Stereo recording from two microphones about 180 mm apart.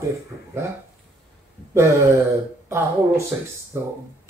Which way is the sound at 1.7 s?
15° right (ahead or behind).